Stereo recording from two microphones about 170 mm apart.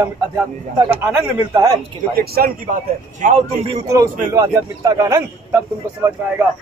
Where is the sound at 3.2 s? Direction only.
50° right (ahead or behind).